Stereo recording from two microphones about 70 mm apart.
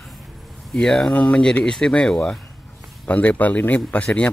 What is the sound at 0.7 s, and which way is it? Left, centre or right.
Speech, centre.